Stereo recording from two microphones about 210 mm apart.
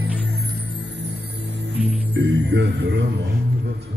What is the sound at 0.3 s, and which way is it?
Music, 50° right (ahead or behind).